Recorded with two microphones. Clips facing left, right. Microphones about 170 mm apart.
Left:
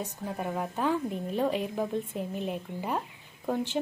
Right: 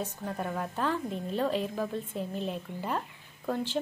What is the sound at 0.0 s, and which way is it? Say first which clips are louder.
A woman's voice: even; 10° left (ahead or behind).